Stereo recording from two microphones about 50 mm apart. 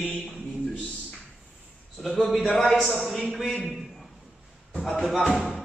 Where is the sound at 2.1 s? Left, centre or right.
Centre.